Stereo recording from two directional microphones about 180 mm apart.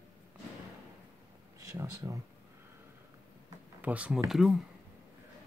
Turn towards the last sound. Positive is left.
turn(degrees=0)  # may be behind; listen again after turning